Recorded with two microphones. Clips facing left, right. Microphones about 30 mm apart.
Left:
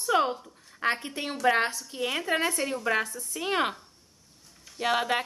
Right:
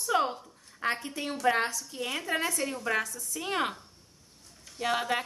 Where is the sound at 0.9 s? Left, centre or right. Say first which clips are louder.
Left 1 dB; left.